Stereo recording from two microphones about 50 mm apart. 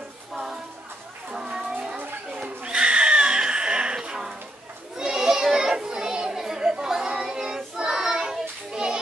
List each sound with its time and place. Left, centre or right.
0.3 s music: centre
1.3 s cat: centre
2.0 s a sound: right
2.6 s neigh: centre
4.9 s children playing: centre